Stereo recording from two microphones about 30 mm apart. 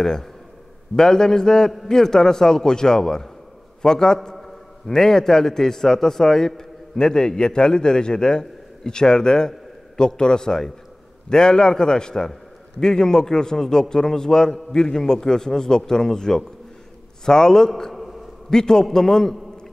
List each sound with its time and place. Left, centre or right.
0.9 s a man's voice: left